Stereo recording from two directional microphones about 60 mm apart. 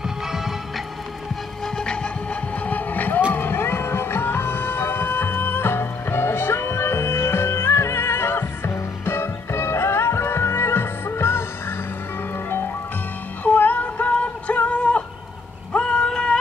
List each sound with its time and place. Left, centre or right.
2.6 s vehicle: left
3.3 s music: left
13.4 s music: left
15.7 s a sound: centre